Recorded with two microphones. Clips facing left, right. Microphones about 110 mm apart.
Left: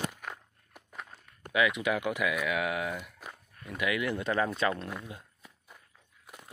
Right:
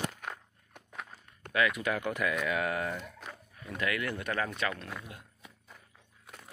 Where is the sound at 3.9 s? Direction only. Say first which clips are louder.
Left 4 dB; 15° left (ahead or behind).